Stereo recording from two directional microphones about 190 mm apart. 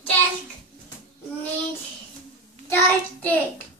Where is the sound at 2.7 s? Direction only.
10° left (ahead or behind).